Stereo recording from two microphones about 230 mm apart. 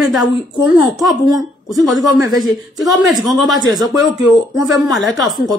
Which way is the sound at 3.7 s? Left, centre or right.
Centre.